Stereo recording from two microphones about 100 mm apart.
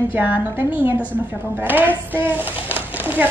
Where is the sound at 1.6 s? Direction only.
20° right (ahead or behind).